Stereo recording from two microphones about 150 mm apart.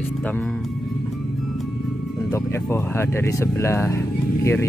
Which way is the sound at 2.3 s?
20° left (ahead or behind).